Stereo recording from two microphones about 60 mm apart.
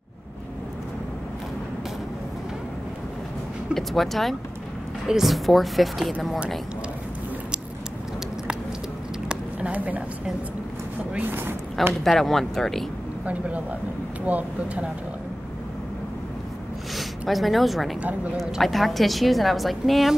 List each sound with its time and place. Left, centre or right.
3.7 s a woman's voice: centre
9.3 s a sound: right
11.1 s speech: right
11.9 s a woman's voice: centre
13.2 s speech: right
16.9 s a woman's voice: centre